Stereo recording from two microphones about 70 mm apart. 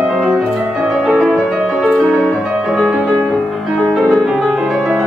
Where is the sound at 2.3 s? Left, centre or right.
Centre.